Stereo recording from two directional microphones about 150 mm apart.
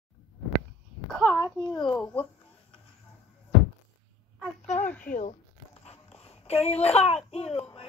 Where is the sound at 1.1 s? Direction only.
5° right (ahead or behind).